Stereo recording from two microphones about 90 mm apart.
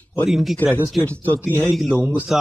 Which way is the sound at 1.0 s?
20° left (ahead or behind).